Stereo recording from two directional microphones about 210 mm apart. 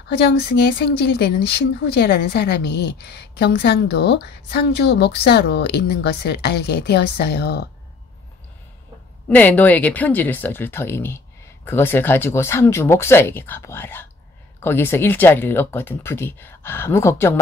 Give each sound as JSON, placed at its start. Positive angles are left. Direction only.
{"t": 0.6, "sound": "speech", "side_deg": 50}
{"t": 9.3, "sound": "speech", "side_deg": 10}